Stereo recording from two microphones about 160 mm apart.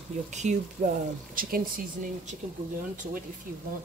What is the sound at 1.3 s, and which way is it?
A woman's voice, 60° right (ahead or behind).